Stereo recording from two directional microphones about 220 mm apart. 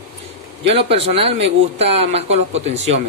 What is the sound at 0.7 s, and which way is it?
Speech, 25° right (ahead or behind).